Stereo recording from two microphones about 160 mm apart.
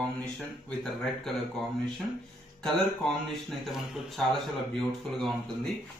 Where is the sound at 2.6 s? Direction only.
Centre (ahead or behind).